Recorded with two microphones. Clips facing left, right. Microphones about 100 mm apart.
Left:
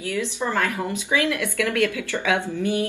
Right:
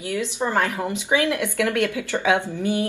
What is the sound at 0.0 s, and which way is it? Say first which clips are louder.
A woman's voice: right 1 dB; 20° right (ahead or behind).